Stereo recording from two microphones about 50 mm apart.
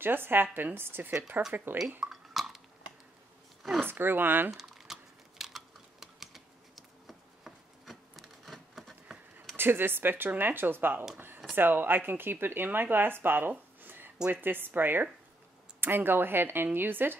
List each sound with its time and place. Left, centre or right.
0.0 s speech: right
1.5 s speech: right
2.0 s dishes: centre
3.8 s speech: right
4.5 s typing: centre
5.4 s computer keyboard: centre
9.6 s speech: right
11.1 s a sound: right
11.5 s speech: right
13.7 s a sound: right
14.3 s speech: right